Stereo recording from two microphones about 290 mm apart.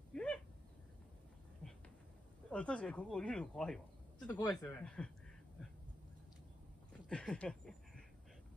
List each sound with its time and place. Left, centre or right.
0.1 s owl: centre
1.6 s a sound: centre
2.5 s a man's voice: centre
6.9 s speech: centre